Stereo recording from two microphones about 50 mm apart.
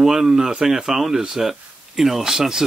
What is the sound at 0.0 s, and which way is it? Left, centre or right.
Speech, centre.